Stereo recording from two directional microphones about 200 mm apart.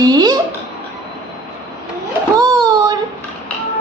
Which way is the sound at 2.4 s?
20° right (ahead or behind).